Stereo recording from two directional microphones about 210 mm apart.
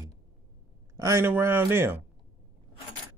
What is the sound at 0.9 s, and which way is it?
Speech, 15° right (ahead or behind).